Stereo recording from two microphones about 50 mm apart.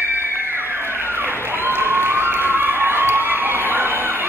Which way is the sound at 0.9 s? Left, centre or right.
Right.